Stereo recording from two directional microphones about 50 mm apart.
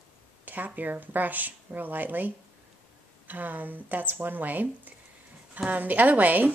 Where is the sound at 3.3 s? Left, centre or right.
Right.